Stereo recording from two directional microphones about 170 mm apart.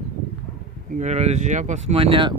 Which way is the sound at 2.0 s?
30° right (ahead or behind).